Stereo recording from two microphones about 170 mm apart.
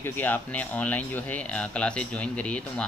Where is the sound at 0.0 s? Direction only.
10° left (ahead or behind).